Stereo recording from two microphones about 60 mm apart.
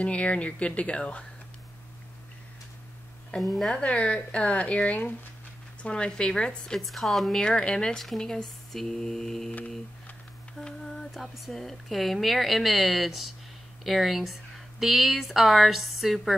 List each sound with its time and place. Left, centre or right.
0.0 s speech: left
3.3 s speech: centre
3.7 s speech: centre
10.6 s mantra: centre
11.3 s speech: centre